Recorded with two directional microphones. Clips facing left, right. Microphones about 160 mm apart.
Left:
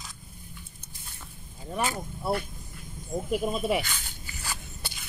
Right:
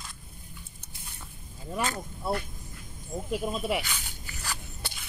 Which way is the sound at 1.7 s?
15° left (ahead or behind).